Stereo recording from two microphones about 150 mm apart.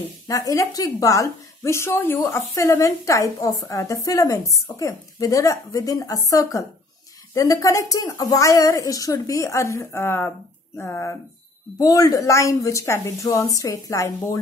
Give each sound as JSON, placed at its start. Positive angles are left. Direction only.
{"t": 0.3, "sound": "a woman's voice", "side_deg": 20}